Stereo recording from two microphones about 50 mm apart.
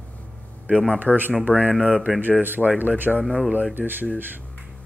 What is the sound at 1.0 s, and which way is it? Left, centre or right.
Speech, right.